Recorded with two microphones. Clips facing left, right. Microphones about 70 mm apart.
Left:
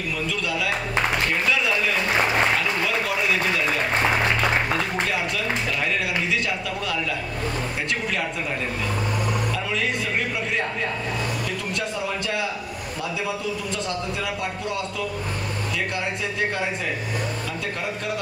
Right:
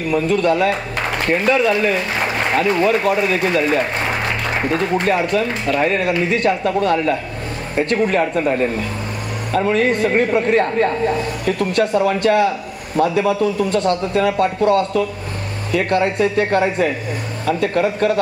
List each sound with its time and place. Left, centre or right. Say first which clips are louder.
0.1 s a man's voice: right 13 dB; right